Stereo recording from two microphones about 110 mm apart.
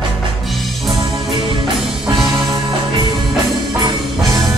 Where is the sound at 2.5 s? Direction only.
35° right (ahead or behind).